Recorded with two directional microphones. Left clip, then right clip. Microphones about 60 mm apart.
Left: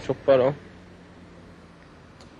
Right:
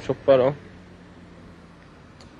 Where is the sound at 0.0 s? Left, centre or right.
Right.